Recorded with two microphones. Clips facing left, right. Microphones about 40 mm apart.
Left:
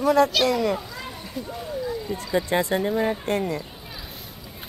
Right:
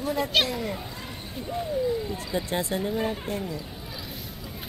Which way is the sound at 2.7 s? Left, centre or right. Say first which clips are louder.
Left 5 dB; left.